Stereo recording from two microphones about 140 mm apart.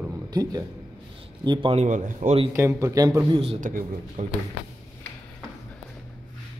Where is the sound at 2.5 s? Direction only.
20° right (ahead or behind).